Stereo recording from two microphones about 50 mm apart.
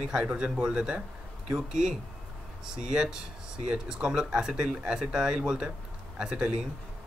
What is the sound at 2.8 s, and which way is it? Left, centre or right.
Speech, centre.